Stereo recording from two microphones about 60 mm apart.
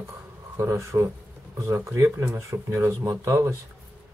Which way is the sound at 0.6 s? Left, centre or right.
Right.